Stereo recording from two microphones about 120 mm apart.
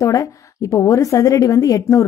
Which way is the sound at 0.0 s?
30° left (ahead or behind).